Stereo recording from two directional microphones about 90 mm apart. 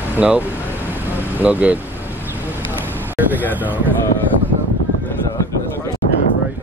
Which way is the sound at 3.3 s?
20° right (ahead or behind).